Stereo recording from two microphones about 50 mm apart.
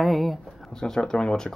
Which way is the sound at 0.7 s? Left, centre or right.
Centre.